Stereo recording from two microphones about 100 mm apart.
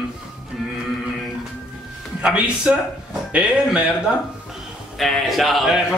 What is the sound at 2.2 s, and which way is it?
Speech, 10° right (ahead or behind).